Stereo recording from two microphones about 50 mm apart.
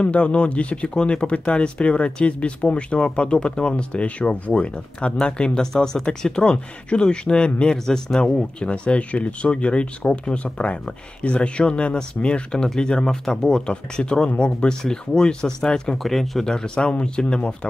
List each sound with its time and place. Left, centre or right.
0.0 s speech: left
16.0 s speech: centre